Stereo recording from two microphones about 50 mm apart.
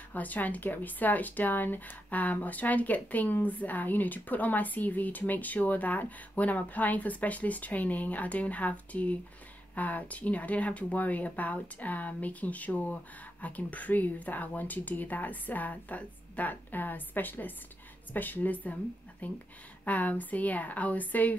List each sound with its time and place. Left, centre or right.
0.1 s speech: left